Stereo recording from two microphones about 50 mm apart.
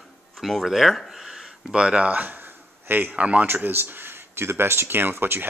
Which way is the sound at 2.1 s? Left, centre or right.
Right.